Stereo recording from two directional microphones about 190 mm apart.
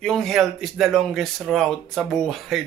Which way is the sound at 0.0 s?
Centre (ahead or behind).